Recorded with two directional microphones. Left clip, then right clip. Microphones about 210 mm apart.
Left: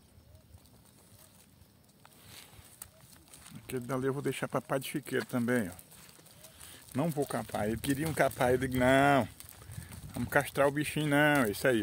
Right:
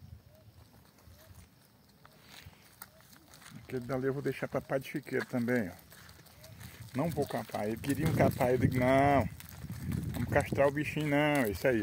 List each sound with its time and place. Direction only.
3.6 s speech: 10° left (ahead or behind)
7.0 s speech: 20° left (ahead or behind)